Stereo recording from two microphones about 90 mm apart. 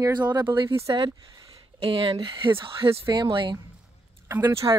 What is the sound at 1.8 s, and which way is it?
Speech, 80° right.